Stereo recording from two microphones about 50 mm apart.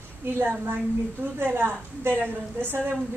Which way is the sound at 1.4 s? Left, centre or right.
Right.